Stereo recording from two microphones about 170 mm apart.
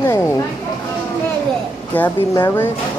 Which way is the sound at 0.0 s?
15° left (ahead or behind).